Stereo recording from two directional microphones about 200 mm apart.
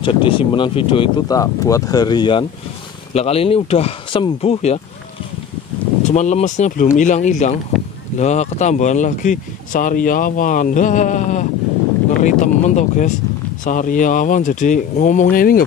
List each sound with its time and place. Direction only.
0.0 s speech: 25° left (ahead or behind)
6.0 s speech: 35° left (ahead or behind)